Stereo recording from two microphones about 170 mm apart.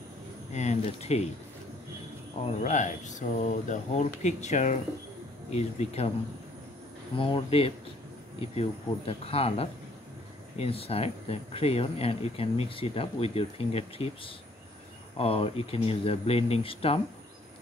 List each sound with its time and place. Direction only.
0.5 s speech: 40° left (ahead or behind)
2.6 s speech: 45° left (ahead or behind)
7.2 s speech: 30° left (ahead or behind)